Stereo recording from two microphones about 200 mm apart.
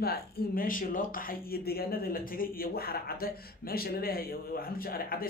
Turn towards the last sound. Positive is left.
turn(degrees=45)  # may be behind; listen again after turning